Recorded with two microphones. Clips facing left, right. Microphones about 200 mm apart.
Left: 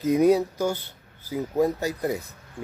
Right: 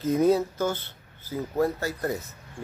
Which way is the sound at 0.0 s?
15° left (ahead or behind).